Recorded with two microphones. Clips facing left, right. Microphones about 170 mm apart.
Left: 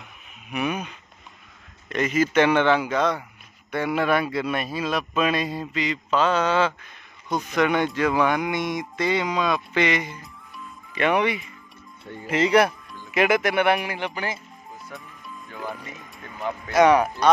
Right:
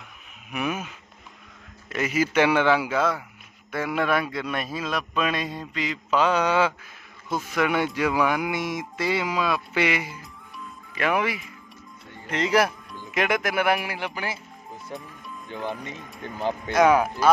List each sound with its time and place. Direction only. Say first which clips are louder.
0.5 s a man's voice: left 2 dB; centre (ahead or behind)
6.1 s a man's voice: even; 10° right (ahead or behind)
14.9 s speech: right 6 dB; 30° right (ahead or behind)
16.7 s a man's voice: left 2 dB; 5° right (ahead or behind)